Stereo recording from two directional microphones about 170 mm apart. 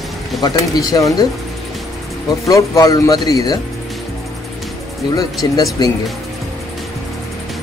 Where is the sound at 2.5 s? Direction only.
20° left (ahead or behind).